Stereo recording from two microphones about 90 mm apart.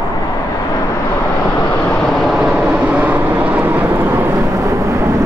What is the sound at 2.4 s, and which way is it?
Vehicle, 10° right (ahead or behind).